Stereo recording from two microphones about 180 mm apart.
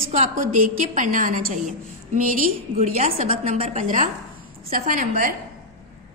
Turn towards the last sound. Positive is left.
turn(degrees=-50)  # may be behind; listen again after turning